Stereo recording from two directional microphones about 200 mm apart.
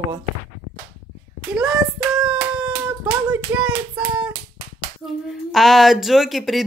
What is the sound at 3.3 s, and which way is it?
Child singing, 5° right (ahead or behind).